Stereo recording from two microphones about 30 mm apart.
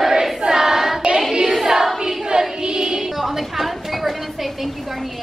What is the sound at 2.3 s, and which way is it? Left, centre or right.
Child singing, right.